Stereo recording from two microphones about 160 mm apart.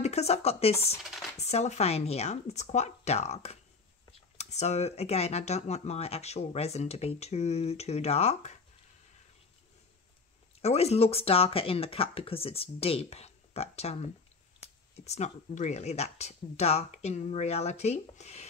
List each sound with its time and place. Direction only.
0.0 s speech: 40° left (ahead or behind)
1.0 s speech: centre (ahead or behind)
1.4 s speech: 45° left (ahead or behind)
10.6 s speech: 40° left (ahead or behind)